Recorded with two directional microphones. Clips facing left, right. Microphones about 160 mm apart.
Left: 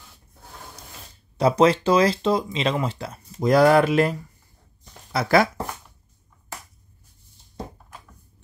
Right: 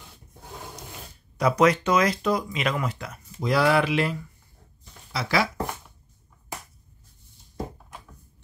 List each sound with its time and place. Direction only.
1.4 s speech: 30° left (ahead or behind); by 5.5 s 50° left (ahead or behind)